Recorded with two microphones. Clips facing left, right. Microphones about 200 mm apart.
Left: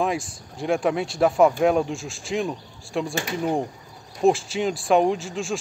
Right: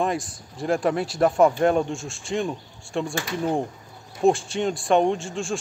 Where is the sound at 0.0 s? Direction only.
Centre (ahead or behind).